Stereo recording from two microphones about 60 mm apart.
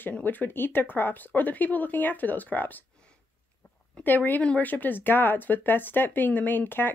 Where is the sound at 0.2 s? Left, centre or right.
Left.